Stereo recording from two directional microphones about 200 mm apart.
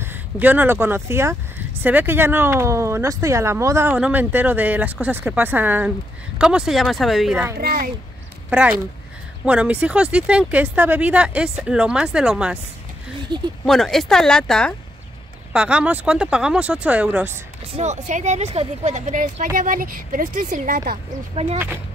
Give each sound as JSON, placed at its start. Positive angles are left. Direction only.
{"t": 0.0, "sound": "speech", "side_deg": -10}
{"t": 7.6, "sound": "speech", "side_deg": -50}
{"t": 8.5, "sound": "speech", "side_deg": -5}
{"t": 13.3, "sound": "speech", "side_deg": -20}
{"t": 13.7, "sound": "speech", "side_deg": 0}
{"t": 17.7, "sound": "speech", "side_deg": -35}